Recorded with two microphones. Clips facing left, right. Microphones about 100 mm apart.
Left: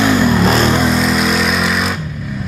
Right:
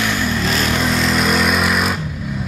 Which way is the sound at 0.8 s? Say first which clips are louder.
Left 4 dB; 10° left (ahead or behind).